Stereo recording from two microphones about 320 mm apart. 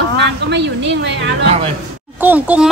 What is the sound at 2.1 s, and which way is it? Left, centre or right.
Speech, centre.